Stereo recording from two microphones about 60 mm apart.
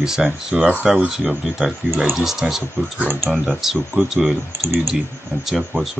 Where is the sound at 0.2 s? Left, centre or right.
Centre.